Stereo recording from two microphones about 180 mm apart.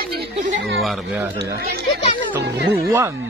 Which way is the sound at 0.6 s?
Centre (ahead or behind).